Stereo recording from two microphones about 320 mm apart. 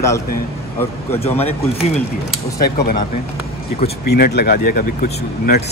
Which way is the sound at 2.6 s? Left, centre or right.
Left.